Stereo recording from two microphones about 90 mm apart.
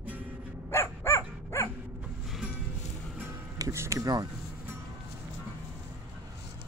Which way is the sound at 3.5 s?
35° right (ahead or behind).